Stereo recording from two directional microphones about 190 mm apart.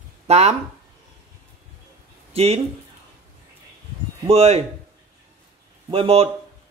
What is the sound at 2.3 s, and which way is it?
Speech, 30° right (ahead or behind).